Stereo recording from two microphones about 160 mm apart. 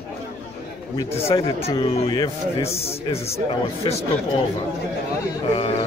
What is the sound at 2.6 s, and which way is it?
Speech, 40° left (ahead or behind).